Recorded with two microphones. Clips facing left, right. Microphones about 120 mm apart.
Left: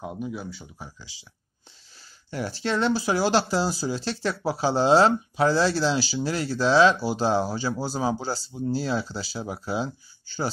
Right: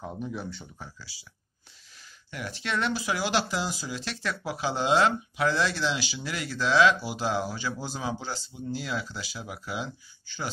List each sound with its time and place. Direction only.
0.0 s speech: 10° left (ahead or behind)
0.8 s speech: 20° left (ahead or behind)
2.3 s speech: 30° left (ahead or behind)